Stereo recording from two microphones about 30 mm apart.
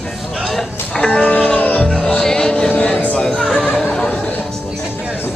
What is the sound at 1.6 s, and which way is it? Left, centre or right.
Music, left.